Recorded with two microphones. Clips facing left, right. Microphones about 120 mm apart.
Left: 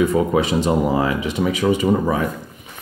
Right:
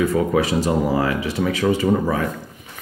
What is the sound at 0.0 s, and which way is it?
Speech, 20° left (ahead or behind).